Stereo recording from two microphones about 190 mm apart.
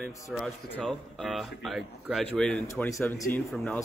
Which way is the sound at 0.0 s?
Centre (ahead or behind).